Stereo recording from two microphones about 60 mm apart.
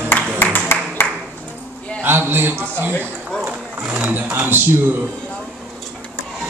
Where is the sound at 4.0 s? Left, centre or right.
Right.